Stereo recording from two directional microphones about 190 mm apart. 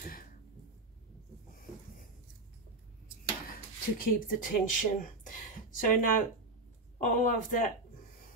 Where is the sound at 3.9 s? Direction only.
45° left (ahead or behind).